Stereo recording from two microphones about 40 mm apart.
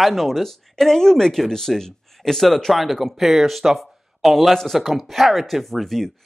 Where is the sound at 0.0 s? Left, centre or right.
Centre.